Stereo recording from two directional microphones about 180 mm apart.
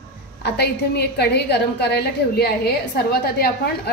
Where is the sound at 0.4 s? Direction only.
65° left (ahead or behind).